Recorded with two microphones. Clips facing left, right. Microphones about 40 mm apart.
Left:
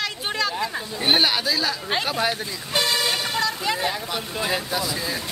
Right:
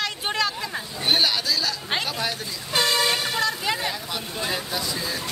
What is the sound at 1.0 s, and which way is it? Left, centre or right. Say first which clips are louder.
Speech: left 2 dB; centre.